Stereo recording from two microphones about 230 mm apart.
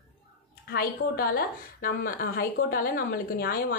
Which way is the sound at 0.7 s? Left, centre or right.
Left.